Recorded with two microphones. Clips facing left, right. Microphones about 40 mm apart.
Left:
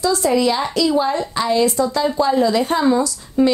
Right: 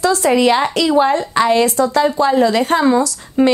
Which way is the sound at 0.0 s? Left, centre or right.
Right.